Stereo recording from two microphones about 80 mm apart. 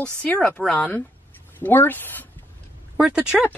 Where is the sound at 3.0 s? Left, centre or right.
Centre.